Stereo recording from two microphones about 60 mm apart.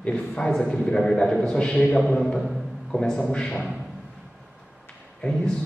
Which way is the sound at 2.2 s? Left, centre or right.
Centre.